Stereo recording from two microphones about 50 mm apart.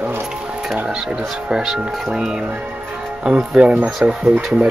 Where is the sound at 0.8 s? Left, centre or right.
Centre.